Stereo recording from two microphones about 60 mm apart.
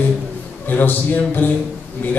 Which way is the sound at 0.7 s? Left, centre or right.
Left.